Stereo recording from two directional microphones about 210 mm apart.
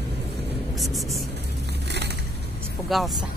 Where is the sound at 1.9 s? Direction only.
55° right (ahead or behind).